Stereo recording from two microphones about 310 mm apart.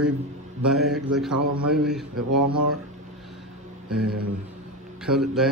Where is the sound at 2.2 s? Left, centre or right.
Right.